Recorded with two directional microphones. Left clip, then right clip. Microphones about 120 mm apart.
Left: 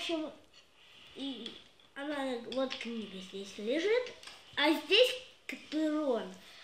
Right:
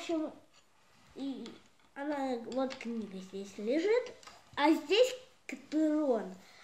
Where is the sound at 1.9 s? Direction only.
30° right (ahead or behind).